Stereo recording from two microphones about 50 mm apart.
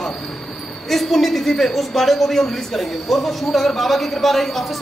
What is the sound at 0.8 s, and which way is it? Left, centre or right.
A woman's voice, centre.